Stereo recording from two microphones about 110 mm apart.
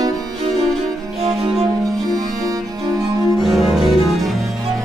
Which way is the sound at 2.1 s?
35° right (ahead or behind).